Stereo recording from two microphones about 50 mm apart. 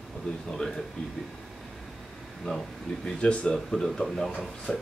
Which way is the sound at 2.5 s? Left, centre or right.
Centre.